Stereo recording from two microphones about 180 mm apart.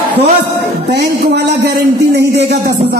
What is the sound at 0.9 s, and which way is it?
A man's voice, 70° right (ahead or behind).